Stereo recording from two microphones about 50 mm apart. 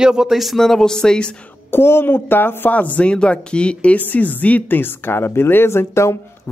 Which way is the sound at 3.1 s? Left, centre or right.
Centre.